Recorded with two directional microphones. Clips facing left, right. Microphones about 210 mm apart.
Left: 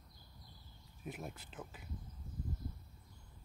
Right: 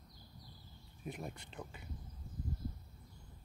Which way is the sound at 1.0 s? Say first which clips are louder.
Right 1 dB; 5° left (ahead or behind).